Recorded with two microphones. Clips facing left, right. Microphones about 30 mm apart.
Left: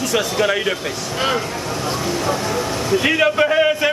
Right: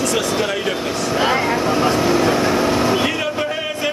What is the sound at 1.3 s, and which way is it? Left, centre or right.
Speech, right.